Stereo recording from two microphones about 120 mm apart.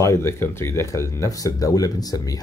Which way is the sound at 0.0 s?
25° left (ahead or behind).